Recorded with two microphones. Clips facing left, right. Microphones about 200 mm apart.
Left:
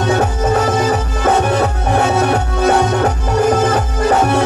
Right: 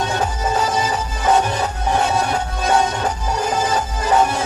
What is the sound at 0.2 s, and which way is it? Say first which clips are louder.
Music: left 5 dB; 60° left (ahead or behind).